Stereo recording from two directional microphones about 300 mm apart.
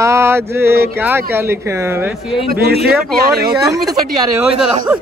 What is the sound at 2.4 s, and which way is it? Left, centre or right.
Speech, right.